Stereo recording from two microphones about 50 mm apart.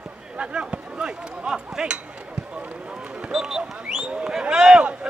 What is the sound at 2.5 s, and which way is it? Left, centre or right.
Run, right.